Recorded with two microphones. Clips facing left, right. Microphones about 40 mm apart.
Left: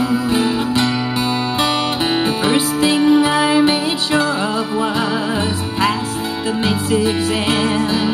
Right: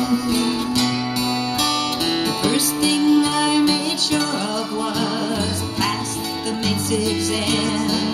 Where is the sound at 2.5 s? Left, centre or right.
Left.